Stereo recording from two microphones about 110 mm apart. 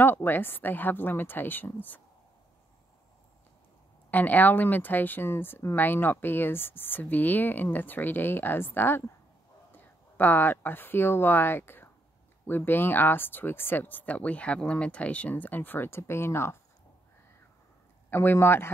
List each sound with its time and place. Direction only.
0.0 s speech: 20° left (ahead or behind)
4.1 s speech: 15° left (ahead or behind)
18.1 s speech: 20° left (ahead or behind)